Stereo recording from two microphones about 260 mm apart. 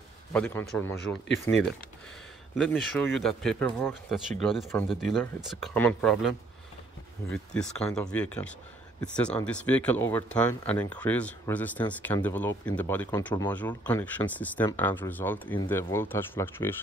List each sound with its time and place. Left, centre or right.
0.3 s speech: centre